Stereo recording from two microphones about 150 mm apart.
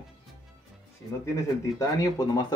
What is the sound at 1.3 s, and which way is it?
Speech, 20° left (ahead or behind).